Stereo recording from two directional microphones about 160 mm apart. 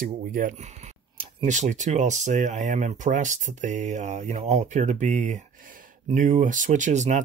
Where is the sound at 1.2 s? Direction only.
45° right (ahead or behind).